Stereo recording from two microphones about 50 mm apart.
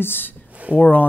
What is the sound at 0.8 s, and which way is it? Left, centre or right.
Speech, left.